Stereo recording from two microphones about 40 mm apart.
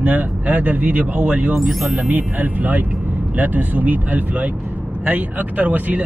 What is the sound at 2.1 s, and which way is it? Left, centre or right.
Speech, right.